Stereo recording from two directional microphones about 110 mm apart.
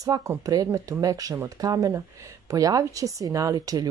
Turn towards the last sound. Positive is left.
turn(degrees=-30)  # may be behind; listen again after turning